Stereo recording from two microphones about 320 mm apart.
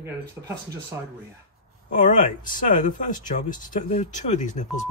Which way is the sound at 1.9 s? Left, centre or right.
Left.